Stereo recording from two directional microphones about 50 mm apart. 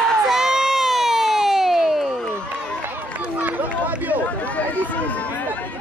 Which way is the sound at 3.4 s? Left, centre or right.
Right.